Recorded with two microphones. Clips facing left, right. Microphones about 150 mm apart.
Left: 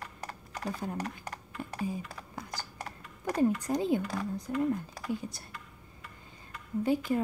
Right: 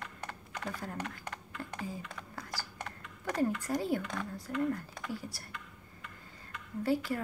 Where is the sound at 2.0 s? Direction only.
35° left (ahead or behind).